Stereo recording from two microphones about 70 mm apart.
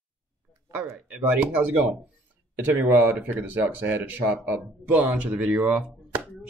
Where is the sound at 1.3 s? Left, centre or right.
Right.